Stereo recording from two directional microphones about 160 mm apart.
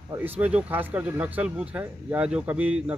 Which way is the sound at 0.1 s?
10° right (ahead or behind).